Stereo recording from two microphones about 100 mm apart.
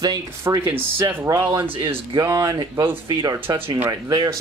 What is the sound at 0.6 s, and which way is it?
Speech, 25° right (ahead or behind).